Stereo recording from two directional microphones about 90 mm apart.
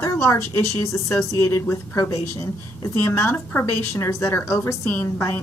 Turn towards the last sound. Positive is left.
turn(degrees=30)  # may be behind; listen again after turning